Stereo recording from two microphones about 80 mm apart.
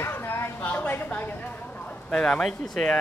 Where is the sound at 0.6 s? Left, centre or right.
Left.